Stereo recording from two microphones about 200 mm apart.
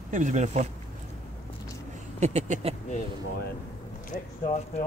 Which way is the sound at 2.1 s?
35° right (ahead or behind).